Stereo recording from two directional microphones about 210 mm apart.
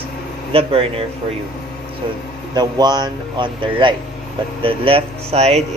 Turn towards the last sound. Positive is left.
turn(degrees=-30)  # may be behind; listen again after turning